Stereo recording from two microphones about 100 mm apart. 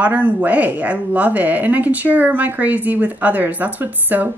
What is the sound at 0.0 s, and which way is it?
Speech, 15° right (ahead or behind).